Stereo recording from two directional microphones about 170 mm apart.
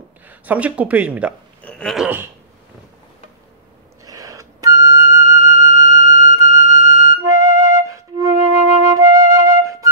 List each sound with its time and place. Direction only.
0.3 s speech: 10° right (ahead or behind)
1.6 s a sound: 5° left (ahead or behind)
4.0 s flute: 20° right (ahead or behind)